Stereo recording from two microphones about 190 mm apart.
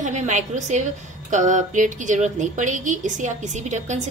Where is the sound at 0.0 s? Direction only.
40° right (ahead or behind).